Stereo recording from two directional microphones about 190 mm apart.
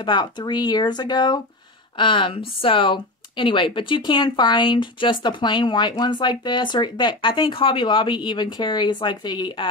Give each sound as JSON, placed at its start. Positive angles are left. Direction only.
{"t": 0.0, "sound": "speech", "side_deg": 25}